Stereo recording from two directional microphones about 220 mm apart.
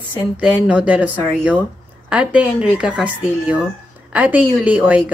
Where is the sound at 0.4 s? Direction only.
5° right (ahead or behind).